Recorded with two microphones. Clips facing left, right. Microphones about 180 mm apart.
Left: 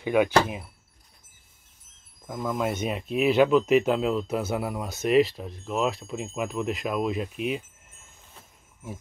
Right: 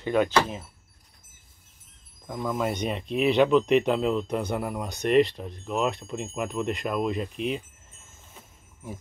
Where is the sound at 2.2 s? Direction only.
Centre (ahead or behind).